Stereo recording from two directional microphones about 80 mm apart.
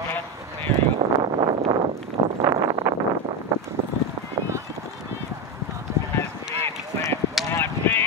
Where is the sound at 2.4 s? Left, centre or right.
Right.